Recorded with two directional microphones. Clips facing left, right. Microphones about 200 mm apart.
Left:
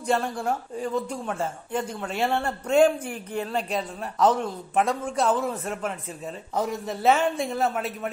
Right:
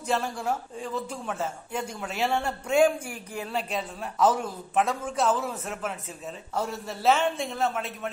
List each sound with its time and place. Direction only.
0.0 s speech: 5° right (ahead or behind)
6.5 s speech: 15° left (ahead or behind)
7.0 s speech: centre (ahead or behind)